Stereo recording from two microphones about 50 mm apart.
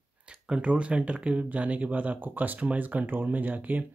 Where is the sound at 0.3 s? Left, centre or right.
Centre.